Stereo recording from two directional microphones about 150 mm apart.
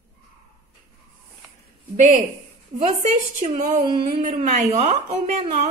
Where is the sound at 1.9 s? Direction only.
55° right (ahead or behind).